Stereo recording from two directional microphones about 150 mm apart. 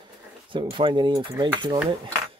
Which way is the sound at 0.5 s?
35° right (ahead or behind).